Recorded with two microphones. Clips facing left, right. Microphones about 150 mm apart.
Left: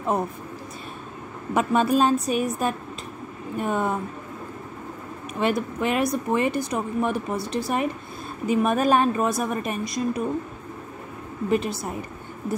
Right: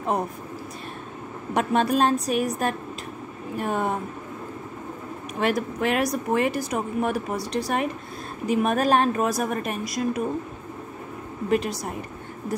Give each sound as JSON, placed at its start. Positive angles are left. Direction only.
{"t": 1.5, "sound": "a woman's voice", "side_deg": 0}
{"t": 5.4, "sound": "a woman's voice", "side_deg": 0}
{"t": 11.5, "sound": "a woman's voice", "side_deg": 0}